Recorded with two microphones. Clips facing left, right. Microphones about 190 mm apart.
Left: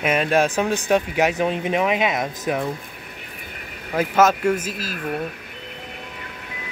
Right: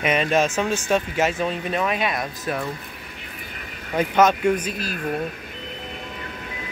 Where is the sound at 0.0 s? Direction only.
5° left (ahead or behind).